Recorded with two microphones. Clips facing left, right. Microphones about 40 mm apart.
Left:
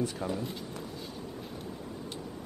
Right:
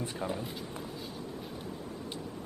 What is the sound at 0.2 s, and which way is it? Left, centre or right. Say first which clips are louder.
Speech: left 1 dB; right.